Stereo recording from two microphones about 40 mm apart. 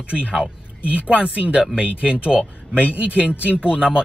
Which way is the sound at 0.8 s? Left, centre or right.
Right.